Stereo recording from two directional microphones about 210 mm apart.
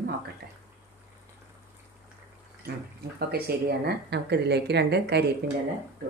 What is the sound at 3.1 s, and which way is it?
A woman's voice, 45° right (ahead or behind).